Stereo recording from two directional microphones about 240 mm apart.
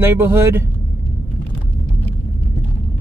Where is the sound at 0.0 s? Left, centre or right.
Centre.